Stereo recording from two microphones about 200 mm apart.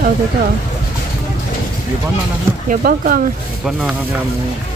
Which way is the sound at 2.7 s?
45° right (ahead or behind).